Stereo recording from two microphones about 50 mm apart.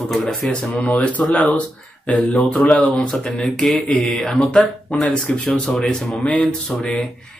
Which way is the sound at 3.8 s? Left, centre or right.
Left.